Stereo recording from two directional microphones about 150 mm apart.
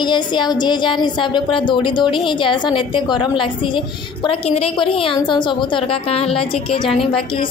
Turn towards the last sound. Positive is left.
turn(degrees=40)  # may be behind; listen again after turning